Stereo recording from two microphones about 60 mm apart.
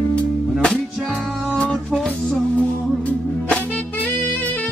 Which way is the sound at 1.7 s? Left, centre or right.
Centre.